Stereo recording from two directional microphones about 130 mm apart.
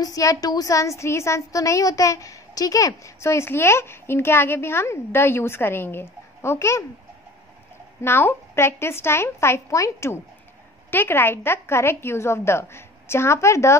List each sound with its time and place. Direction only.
0.0 s a woman's voice: 25° left (ahead or behind)
8.0 s a woman's voice: 15° left (ahead or behind)